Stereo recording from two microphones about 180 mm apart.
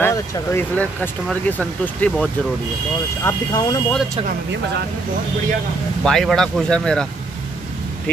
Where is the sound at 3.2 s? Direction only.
20° left (ahead or behind).